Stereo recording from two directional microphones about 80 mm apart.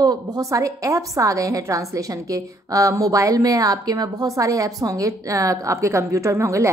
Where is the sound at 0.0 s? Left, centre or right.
Right.